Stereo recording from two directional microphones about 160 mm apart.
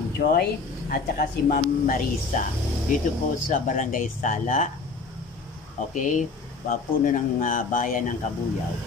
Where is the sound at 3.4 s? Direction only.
55° left (ahead or behind).